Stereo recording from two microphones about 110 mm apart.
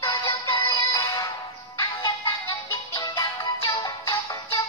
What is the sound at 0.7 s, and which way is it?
Music, 35° left (ahead or behind).